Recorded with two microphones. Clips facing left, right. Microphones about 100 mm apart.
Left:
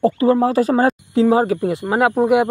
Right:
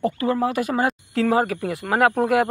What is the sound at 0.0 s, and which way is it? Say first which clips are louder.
Speech: left 7 dB; 25° left (ahead or behind).